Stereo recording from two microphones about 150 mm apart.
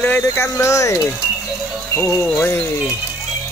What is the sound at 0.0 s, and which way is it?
Speech, 15° left (ahead or behind).